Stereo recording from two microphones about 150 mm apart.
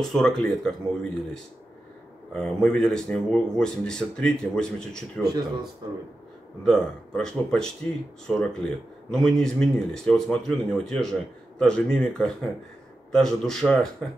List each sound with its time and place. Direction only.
0.0 s speech: centre (ahead or behind)
2.3 s speech: 5° left (ahead or behind)
5.2 s speech: 25° right (ahead or behind)
6.6 s speech: 5° left (ahead or behind)